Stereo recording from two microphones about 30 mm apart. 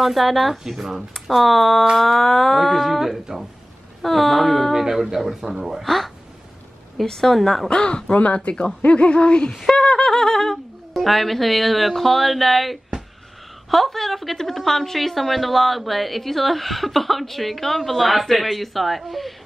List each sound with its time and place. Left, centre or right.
0.0 s a woman's voice: centre
0.7 s speech: centre
1.2 s a woman's voice: centre
5.9 s a woman's voice: centre
7.8 s speech: left
9.7 s wind instrument: left
11.0 s a woman's voice: centre